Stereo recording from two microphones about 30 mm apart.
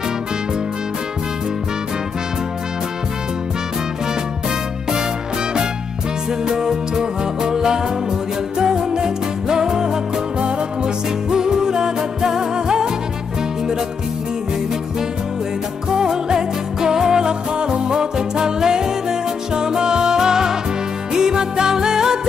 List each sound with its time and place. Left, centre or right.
6.4 s music: centre
16.0 s music: right